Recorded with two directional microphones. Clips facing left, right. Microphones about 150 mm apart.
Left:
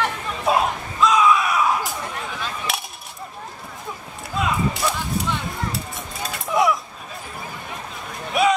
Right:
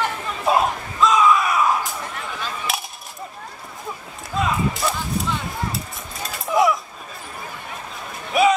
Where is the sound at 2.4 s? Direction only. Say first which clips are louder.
Right 3 dB; centre (ahead or behind).